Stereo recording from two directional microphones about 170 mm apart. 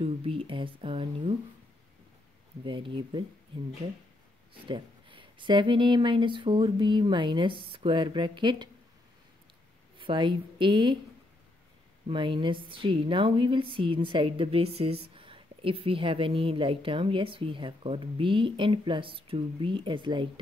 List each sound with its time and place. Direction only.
0.0 s speech: 30° right (ahead or behind)
2.6 s speech: 30° right (ahead or behind)
4.6 s speech: 30° right (ahead or behind)
9.9 s speech: 30° right (ahead or behind)
12.1 s speech: 30° right (ahead or behind)